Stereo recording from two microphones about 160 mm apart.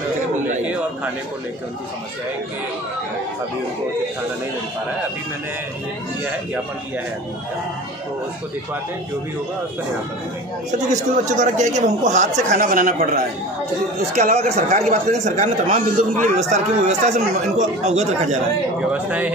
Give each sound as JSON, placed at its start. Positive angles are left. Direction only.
{"t": 11.2, "sound": "a man's voice", "side_deg": -50}
{"t": 14.3, "sound": "a man's voice", "side_deg": -40}
{"t": 19.0, "sound": "speech", "side_deg": -10}